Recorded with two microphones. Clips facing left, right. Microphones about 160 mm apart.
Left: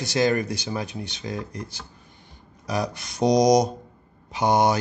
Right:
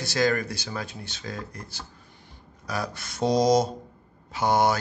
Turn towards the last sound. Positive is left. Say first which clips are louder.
# left 2 dB
turn(degrees=20)  # may be behind; listen again after turning